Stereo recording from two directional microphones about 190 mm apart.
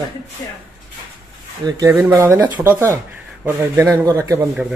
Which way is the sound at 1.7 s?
15° right (ahead or behind).